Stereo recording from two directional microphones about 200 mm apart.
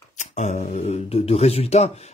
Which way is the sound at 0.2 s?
35° left (ahead or behind).